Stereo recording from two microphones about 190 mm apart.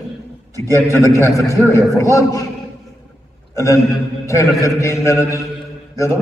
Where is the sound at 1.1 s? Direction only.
15° left (ahead or behind).